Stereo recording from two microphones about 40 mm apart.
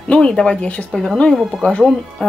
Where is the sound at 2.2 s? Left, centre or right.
Left.